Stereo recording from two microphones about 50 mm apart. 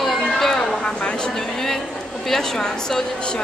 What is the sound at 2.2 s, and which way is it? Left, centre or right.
A woman's voice, centre.